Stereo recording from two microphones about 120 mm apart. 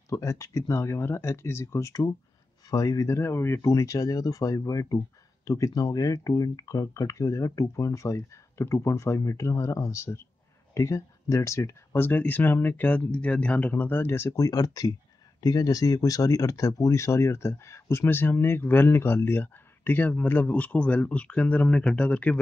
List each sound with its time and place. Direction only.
0.1 s speech: 25° left (ahead or behind); by 22.4 s 10° left (ahead or behind)